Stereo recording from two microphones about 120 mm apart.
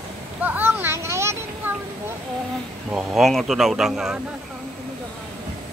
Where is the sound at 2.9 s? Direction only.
Centre (ahead or behind).